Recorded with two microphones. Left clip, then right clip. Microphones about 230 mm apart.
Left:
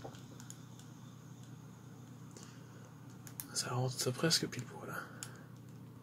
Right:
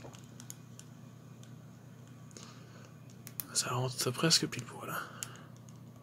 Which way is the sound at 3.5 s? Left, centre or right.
Right.